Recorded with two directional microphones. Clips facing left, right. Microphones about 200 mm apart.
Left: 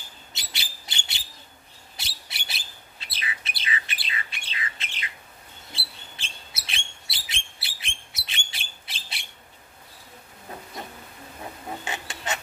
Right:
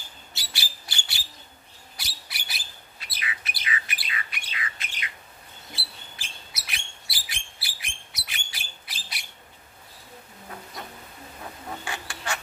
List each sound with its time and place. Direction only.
0.3 s bird: 20° left (ahead or behind)
5.7 s chirp: 25° left (ahead or behind)
11.8 s a sound: 20° left (ahead or behind)